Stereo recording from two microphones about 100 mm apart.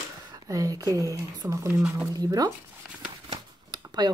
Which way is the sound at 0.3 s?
35° right (ahead or behind).